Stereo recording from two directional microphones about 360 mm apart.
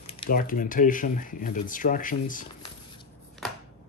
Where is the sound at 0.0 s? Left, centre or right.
Centre.